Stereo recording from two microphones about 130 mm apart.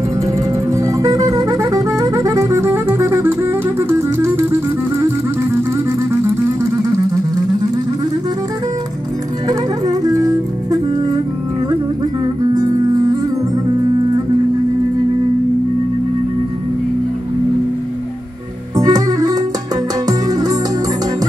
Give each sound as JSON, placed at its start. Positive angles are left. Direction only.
{"t": 0.7, "sound": "music", "side_deg": -25}
{"t": 9.5, "sound": "music", "side_deg": -30}
{"t": 12.5, "sound": "music", "side_deg": -30}
{"t": 18.8, "sound": "music", "side_deg": -30}